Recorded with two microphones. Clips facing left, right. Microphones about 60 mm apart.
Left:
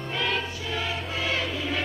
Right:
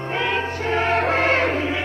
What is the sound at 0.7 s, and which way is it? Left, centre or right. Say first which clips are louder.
Music: right 11 dB; right.